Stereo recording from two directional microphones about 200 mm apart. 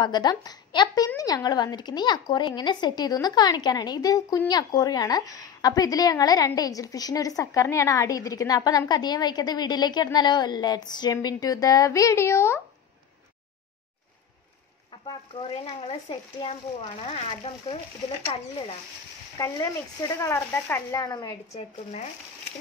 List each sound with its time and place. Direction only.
0.0 s a woman's voice: 20° left (ahead or behind)
15.0 s a woman's voice: 25° left (ahead or behind)
19.3 s speech: 15° left (ahead or behind)
21.5 s speech: 35° left (ahead or behind)